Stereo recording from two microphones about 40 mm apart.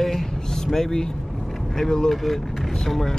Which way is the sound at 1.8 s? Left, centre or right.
Centre.